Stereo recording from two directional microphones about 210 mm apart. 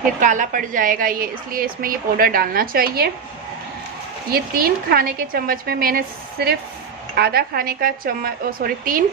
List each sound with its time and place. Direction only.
0.2 s a woman's voice: 40° right (ahead or behind)
4.3 s a woman's voice: 45° right (ahead or behind)